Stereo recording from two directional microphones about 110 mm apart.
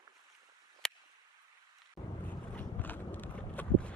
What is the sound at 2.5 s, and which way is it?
Clip-clop, 15° left (ahead or behind).